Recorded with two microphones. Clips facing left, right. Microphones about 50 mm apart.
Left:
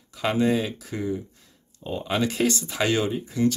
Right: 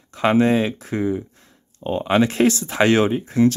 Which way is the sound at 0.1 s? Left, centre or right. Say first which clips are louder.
Right 6 dB; right.